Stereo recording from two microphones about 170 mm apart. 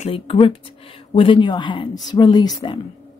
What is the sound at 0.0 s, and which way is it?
Speech, 35° left (ahead or behind).